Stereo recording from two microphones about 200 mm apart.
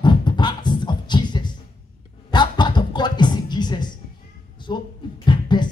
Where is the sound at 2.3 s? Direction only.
20° left (ahead or behind).